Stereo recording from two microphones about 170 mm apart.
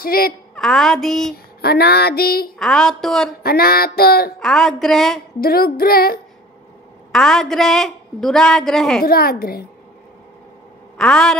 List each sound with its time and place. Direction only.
0.0 s female singing: 60° left (ahead or behind)
0.6 s a woman's voice: centre (ahead or behind)
1.3 s female singing: 65° left (ahead or behind)
2.6 s a woman's voice: centre (ahead or behind)
3.4 s female singing: 65° left (ahead or behind)
4.4 s a woman's voice: centre (ahead or behind)
5.4 s female singing: 60° left (ahead or behind)
7.1 s a woman's voice: 5° left (ahead or behind)
9.0 s female singing: 60° left (ahead or behind)
11.0 s a woman's voice: 5° left (ahead or behind)